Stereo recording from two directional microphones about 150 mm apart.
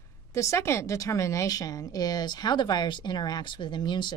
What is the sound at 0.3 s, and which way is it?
A woman's voice, 20° left (ahead or behind).